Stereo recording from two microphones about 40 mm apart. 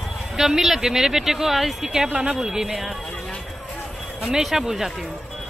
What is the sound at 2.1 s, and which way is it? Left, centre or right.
Speech, right.